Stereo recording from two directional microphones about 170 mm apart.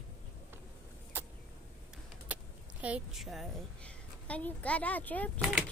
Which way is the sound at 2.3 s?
10° right (ahead or behind).